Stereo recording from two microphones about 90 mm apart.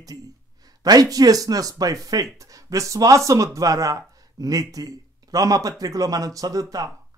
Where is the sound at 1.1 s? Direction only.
40° right (ahead or behind).